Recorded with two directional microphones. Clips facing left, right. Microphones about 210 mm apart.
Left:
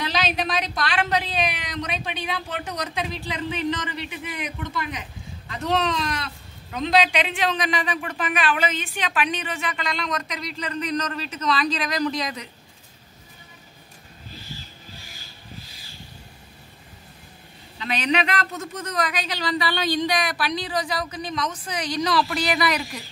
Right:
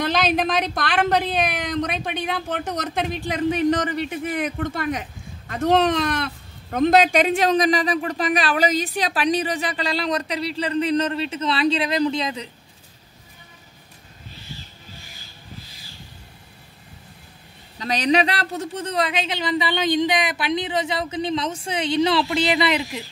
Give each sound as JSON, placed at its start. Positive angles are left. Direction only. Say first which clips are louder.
{"t": 0.0, "sound": "a woman's voice", "louder": "right 5 dB", "side_deg": -50}
{"t": 17.7, "sound": "a woman's voice", "louder": "right 4 dB", "side_deg": -40}